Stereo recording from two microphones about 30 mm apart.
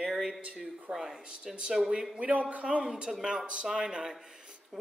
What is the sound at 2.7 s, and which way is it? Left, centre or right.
A man's voice, right.